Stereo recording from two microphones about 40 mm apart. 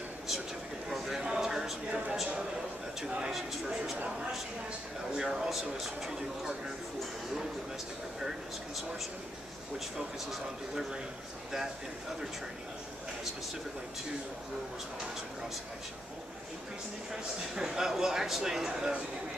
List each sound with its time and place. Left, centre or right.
1.1 s a sound: centre
5.1 s speech: centre
17.1 s speech: centre